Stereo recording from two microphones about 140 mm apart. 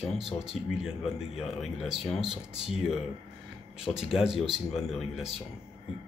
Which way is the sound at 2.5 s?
40° left (ahead or behind).